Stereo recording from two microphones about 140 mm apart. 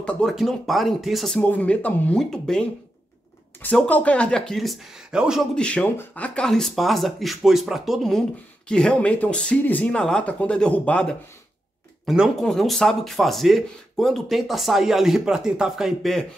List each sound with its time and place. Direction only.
0.0 s speech: 10° left (ahead or behind)
1.4 s speech: 10° left (ahead or behind)
3.6 s speech: 10° left (ahead or behind)
5.5 s speech: 10° left (ahead or behind)